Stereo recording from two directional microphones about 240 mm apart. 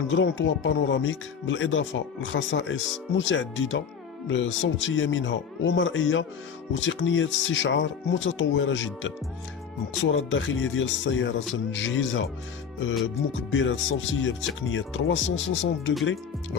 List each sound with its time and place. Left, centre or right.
0.1 s speech: left
10.1 s speech: left
13.5 s speech: left